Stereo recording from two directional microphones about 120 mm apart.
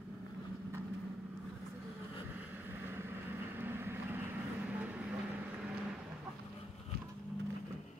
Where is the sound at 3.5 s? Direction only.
15° right (ahead or behind).